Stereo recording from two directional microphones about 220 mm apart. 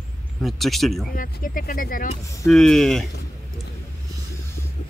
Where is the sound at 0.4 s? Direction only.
Centre (ahead or behind).